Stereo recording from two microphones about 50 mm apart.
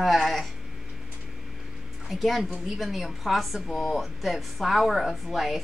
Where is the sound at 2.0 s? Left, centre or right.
Centre.